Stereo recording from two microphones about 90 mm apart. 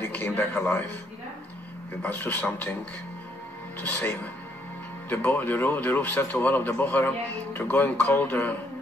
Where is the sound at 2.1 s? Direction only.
20° left (ahead or behind).